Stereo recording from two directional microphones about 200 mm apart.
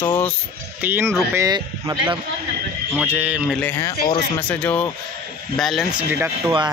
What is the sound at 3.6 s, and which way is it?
Speech, 10° left (ahead or behind).